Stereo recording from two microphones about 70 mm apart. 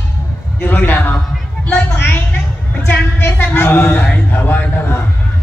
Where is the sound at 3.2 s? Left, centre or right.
Left.